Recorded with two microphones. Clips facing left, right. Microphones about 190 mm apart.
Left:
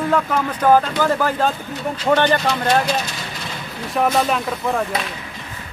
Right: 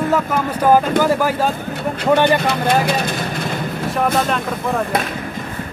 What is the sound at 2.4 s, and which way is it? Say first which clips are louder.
Vehicle: right 1 dB; 55° right (ahead or behind).